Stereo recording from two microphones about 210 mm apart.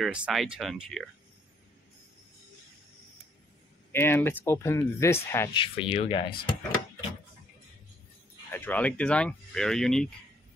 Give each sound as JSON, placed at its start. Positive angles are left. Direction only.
{"t": 0.0, "sound": "speech", "side_deg": -5}
{"t": 3.9, "sound": "speech", "side_deg": 10}
{"t": 5.6, "sound": "speech", "side_deg": 25}
{"t": 8.5, "sound": "speech", "side_deg": 10}